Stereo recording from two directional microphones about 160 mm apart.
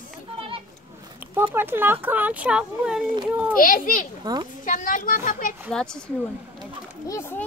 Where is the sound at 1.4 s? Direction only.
15° right (ahead or behind).